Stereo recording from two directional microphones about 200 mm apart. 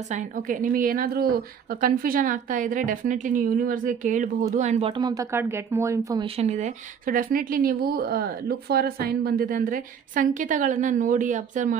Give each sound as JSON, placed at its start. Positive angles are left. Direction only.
{"t": 0.1, "sound": "speech", "side_deg": -40}
{"t": 6.2, "sound": "speech", "side_deg": -35}